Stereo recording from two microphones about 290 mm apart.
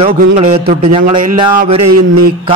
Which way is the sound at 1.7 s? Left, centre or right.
Right.